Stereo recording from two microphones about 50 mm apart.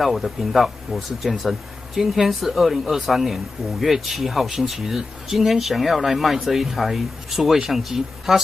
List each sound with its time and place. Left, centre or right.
0.0 s speech: centre